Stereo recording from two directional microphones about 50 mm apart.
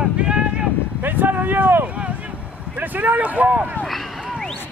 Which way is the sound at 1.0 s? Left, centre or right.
Right.